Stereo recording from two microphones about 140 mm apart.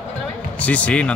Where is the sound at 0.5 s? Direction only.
10° left (ahead or behind).